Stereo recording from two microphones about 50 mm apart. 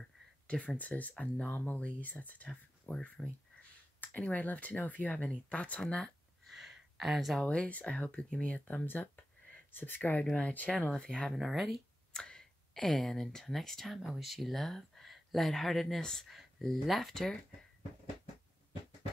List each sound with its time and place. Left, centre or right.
0.5 s speech: left
6.4 s a sound: centre
7.4 s speech: left
8.8 s a sound: left
9.7 s speech: left
10.9 s speech: centre
11.3 s speech: centre
12.1 s speech: centre